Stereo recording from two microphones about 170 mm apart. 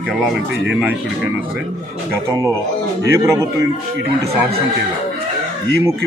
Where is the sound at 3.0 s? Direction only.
15° right (ahead or behind).